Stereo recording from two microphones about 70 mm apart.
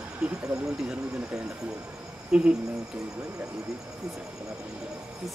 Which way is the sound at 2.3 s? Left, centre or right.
Centre.